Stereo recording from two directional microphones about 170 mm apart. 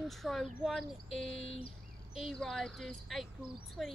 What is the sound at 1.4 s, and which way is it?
Bird, 35° left (ahead or behind).